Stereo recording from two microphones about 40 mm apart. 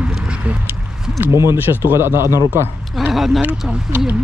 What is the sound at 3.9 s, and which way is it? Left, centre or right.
Speech, right.